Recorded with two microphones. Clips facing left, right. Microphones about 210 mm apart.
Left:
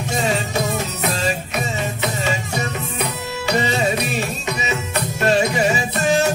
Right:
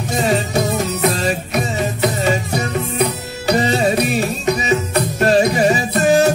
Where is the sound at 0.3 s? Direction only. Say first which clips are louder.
Right 4 dB; 35° right (ahead or behind).